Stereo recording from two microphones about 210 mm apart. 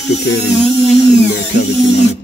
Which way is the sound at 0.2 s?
55° left (ahead or behind).